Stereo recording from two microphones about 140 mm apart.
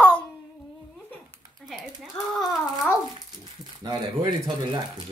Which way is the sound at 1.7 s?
Centre (ahead or behind).